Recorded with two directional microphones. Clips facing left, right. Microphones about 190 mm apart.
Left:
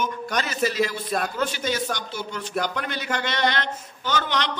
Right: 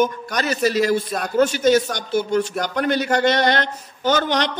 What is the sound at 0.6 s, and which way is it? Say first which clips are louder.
A man's voice: right 7 dB; 40° right (ahead or behind).